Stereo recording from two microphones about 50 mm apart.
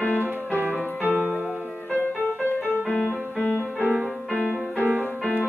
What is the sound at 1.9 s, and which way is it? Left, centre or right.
Music, left.